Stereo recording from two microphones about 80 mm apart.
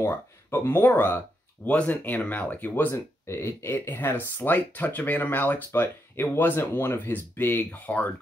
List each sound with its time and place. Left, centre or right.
0.0 s speech: left